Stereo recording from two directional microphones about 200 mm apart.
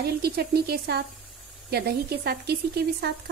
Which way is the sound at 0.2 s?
50° right (ahead or behind).